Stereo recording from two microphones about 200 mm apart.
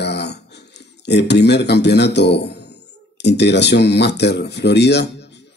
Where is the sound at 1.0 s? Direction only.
60° left (ahead or behind).